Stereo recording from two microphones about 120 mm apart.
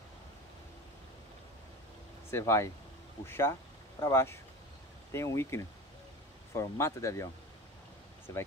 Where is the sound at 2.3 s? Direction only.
20° left (ahead or behind).